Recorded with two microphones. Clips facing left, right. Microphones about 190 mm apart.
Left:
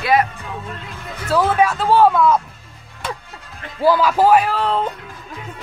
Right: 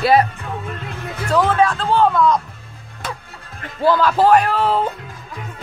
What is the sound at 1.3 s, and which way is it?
A man's voice, 10° left (ahead or behind).